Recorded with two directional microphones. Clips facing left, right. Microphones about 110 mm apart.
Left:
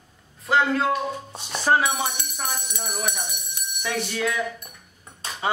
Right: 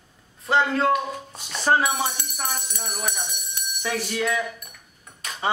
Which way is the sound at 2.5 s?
10° left (ahead or behind).